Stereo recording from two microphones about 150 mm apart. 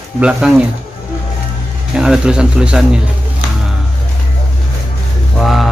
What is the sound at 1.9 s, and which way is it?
Speech, 5° right (ahead or behind).